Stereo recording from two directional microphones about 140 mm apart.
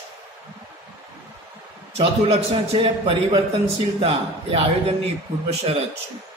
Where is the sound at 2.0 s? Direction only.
45° right (ahead or behind).